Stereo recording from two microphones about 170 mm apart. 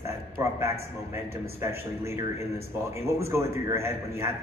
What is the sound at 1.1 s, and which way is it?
A man's voice, 15° right (ahead or behind).